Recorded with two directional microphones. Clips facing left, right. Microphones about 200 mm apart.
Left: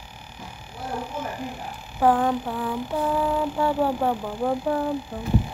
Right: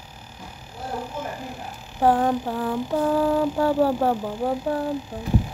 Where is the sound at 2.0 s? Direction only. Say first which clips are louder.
Right 1 dB; 35° right (ahead or behind).